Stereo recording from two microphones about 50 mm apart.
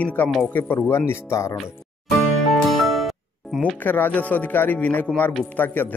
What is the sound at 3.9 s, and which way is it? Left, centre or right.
Speech, left.